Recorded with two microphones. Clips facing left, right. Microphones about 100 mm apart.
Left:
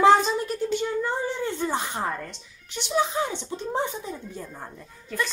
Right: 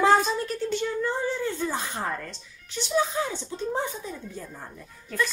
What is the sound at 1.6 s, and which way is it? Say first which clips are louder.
Speech: left 2 dB; 25° left (ahead or behind).